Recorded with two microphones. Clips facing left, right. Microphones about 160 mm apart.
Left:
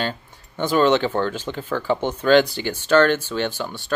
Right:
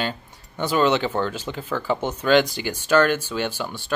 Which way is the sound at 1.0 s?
10° right (ahead or behind).